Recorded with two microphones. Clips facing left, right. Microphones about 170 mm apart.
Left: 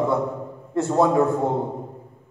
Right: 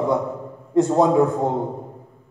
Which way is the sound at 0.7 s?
15° right (ahead or behind).